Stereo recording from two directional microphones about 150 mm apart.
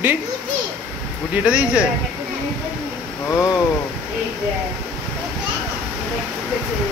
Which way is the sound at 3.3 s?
20° left (ahead or behind).